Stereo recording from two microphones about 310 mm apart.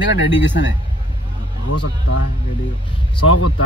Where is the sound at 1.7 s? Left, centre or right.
Left.